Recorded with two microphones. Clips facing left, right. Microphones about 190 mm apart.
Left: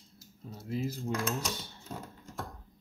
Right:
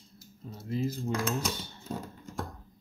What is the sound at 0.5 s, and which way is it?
Speech, 5° left (ahead or behind).